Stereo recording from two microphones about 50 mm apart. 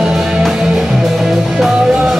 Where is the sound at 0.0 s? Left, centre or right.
Centre.